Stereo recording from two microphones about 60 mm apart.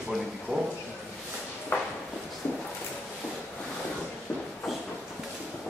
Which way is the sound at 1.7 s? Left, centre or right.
Left.